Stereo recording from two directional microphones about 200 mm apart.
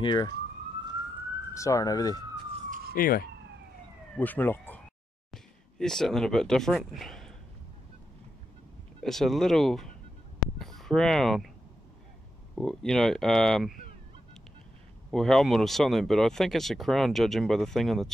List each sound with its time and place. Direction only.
0.0 s speech: 20° left (ahead or behind)
1.5 s speech: 15° left (ahead or behind)
2.9 s speech: 45° left (ahead or behind)
4.2 s speech: 10° left (ahead or behind)
9.0 s speech: centre (ahead or behind)
12.5 s speech: centre (ahead or behind)
15.0 s speech: centre (ahead or behind)